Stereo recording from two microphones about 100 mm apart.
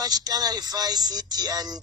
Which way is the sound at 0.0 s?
40° right (ahead or behind).